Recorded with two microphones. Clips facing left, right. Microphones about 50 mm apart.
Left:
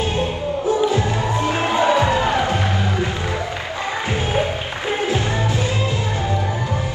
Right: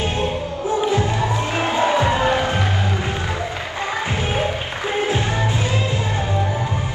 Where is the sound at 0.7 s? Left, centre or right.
Right.